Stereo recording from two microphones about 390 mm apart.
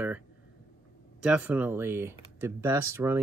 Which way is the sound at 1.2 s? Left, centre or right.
Centre.